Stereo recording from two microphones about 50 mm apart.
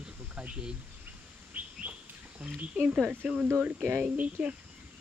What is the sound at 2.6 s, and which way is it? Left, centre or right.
Speech, right.